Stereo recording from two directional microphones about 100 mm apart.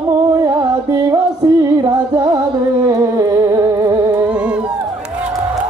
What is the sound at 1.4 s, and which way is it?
Music, 40° right (ahead or behind).